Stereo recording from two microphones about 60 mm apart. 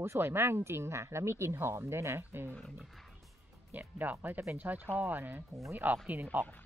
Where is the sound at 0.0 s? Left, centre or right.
Right.